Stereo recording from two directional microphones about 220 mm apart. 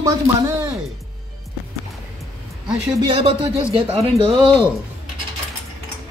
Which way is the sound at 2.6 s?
20° right (ahead or behind).